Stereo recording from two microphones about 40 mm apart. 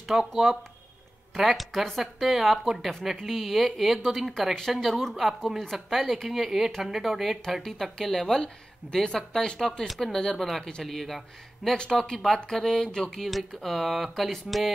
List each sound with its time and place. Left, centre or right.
0.3 s a woman's voice: centre
4.6 s a woman's voice: centre
10.1 s speech: centre
10.4 s a woman's voice: centre
11.7 s a woman's voice: centre